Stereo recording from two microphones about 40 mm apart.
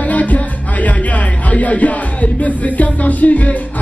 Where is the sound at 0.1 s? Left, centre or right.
Left.